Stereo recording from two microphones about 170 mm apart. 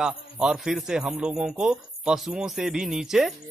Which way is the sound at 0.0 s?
5° right (ahead or behind).